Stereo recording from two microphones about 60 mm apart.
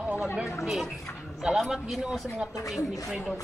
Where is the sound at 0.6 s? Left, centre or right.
Centre.